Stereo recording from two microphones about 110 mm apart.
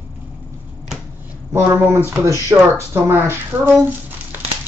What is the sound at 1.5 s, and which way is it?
Speech, 25° right (ahead or behind).